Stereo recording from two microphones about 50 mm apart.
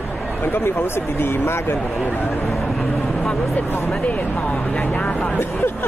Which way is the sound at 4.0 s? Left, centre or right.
Left.